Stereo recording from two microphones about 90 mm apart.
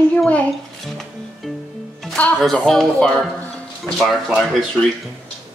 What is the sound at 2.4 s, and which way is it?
Speech, 5° left (ahead or behind).